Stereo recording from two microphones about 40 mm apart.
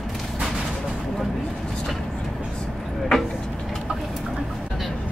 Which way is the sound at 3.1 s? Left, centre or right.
Centre.